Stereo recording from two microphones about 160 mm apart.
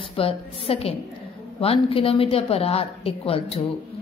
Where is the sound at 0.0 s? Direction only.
35° left (ahead or behind).